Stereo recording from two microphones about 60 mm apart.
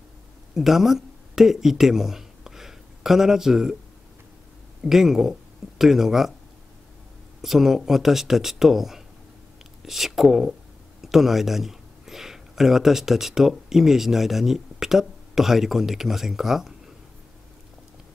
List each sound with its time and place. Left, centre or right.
0.6 s speech: centre
4.8 s speech: centre
7.4 s speech: centre